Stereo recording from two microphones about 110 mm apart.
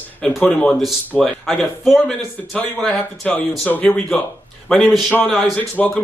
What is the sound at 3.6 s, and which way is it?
Speech, 15° left (ahead or behind).